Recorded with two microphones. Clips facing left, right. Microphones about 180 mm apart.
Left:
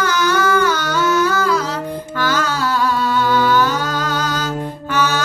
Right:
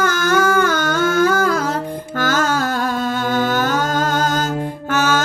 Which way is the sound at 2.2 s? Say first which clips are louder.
Right 2 dB; 50° right (ahead or behind).